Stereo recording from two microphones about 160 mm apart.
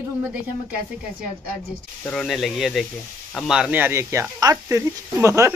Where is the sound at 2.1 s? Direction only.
Centre (ahead or behind).